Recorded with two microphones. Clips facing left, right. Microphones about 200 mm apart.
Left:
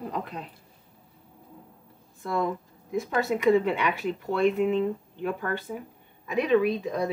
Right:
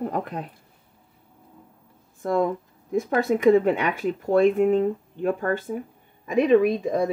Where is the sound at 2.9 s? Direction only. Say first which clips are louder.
Right 5 dB; 55° right (ahead or behind).